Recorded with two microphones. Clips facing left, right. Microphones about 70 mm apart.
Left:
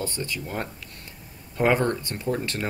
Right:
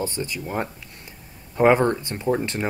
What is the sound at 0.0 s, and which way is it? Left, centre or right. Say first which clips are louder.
Speech: right 3 dB; right.